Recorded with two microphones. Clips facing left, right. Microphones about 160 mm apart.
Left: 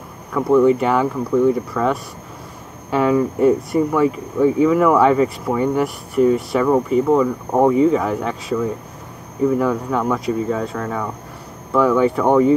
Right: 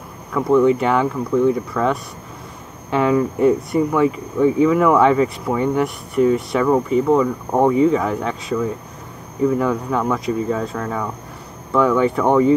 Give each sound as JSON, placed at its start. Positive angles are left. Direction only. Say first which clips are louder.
{"t": 0.3, "sound": "speech", "louder": "left 1 dB", "side_deg": 5}